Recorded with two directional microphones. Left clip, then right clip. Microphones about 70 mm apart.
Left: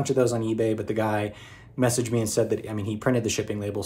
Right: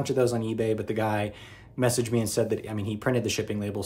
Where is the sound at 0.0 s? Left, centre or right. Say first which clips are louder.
Left 2 dB; right.